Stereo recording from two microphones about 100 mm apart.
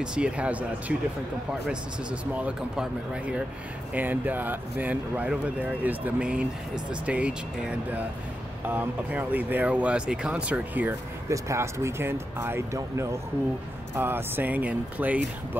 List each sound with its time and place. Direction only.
0.0 s speech: 10° right (ahead or behind)
2.3 s speech: 10° right (ahead or behind)
11.2 s speech: 30° right (ahead or behind); by 15.2 s 15° right (ahead or behind)